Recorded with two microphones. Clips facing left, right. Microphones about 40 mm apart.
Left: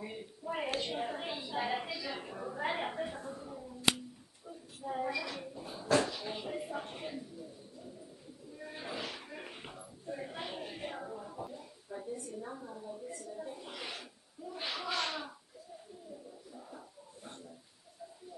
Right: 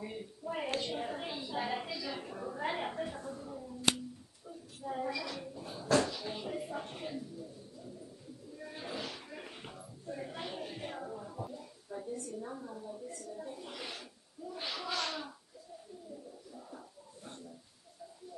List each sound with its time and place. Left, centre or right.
0.0 s a sound: centre
0.7 s a woman's voice: centre
4.8 s a woman's voice: centre
8.6 s a woman's voice: centre